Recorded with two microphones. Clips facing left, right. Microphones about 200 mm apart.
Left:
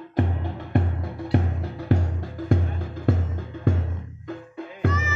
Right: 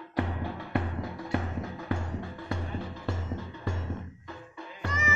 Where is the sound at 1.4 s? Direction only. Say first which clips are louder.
Left 4 dB; 35° left (ahead or behind); by 4.9 s 55° left (ahead or behind).